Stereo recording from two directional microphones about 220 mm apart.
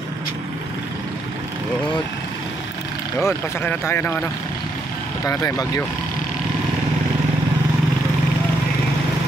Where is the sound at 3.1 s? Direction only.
10° left (ahead or behind).